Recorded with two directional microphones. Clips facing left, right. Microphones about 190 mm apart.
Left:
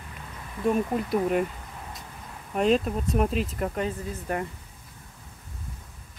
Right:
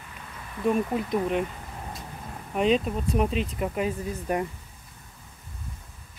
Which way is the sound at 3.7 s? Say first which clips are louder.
Right 2 dB; 15° right (ahead or behind).